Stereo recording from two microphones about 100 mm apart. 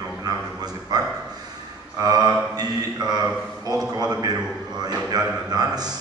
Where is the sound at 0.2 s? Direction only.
40° right (ahead or behind).